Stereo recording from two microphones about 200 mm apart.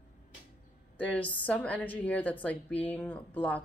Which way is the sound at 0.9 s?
5° left (ahead or behind).